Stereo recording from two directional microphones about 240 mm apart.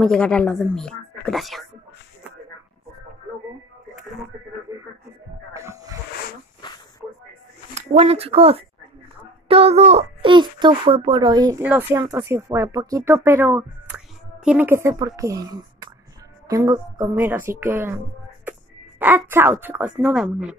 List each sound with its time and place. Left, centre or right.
0.0 s speech: centre
5.5 s music: centre
6.6 s snake: centre
7.7 s a child's voice: right; by 20.5 s centre